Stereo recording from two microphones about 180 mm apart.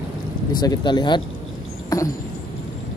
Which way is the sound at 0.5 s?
25° left (ahead or behind).